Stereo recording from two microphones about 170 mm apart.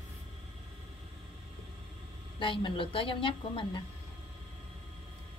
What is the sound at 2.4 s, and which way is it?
A woman's voice, 30° left (ahead or behind).